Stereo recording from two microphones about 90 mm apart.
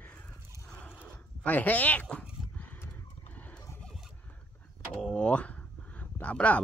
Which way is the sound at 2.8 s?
20° left (ahead or behind).